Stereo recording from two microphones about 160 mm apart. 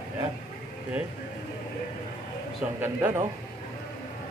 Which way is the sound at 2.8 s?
15° right (ahead or behind).